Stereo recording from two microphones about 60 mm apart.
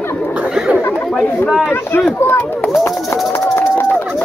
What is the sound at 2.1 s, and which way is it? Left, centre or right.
Speech, left.